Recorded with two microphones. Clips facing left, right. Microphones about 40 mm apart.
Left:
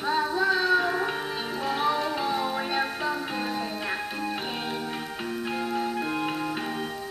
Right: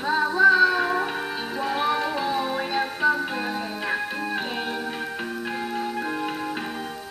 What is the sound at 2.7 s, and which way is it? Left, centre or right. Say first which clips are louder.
Music: right 5 dB; centre.